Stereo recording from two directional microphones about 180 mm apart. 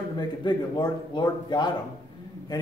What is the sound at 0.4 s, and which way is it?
A man's voice, 25° left (ahead or behind).